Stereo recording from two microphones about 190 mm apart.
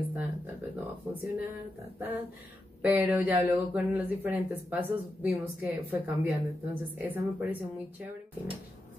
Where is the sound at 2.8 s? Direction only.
10° right (ahead or behind).